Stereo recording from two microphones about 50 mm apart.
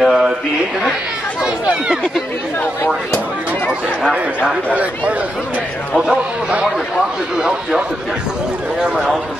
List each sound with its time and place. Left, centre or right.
0.0 s a sound: centre
1.4 s a man's voice: centre
4.5 s a man's voice: right
7.3 s a man's voice: centre